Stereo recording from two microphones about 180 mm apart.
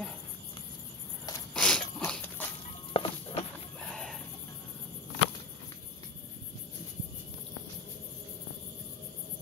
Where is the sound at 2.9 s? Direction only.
30° left (ahead or behind).